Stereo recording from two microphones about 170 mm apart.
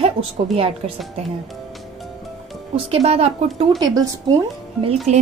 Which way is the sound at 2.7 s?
35° right (ahead or behind).